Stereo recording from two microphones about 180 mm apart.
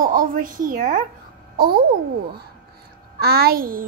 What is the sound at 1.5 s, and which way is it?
Speech, 55° right (ahead or behind).